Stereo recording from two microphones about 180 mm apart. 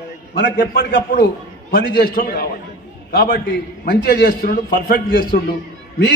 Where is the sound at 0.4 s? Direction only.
60° left (ahead or behind).